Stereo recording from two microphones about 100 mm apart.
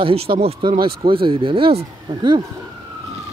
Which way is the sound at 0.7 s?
60° right (ahead or behind).